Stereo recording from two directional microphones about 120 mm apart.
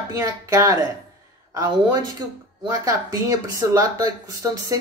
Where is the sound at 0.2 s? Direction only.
30° right (ahead or behind).